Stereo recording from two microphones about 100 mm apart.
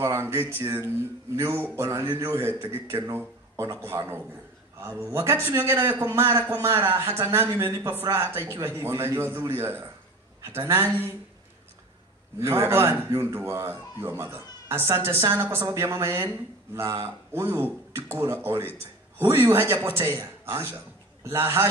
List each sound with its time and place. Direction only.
0.0 s a man's voice: 25° right (ahead or behind)
12.4 s a man's voice: 25° right (ahead or behind)